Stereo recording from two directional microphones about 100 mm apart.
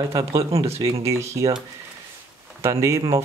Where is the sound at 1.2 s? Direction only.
30° right (ahead or behind).